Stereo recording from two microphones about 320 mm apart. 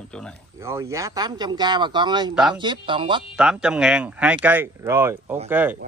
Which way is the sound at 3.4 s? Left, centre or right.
Centre.